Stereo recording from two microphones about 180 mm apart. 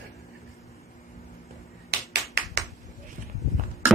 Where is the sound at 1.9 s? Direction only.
65° right (ahead or behind).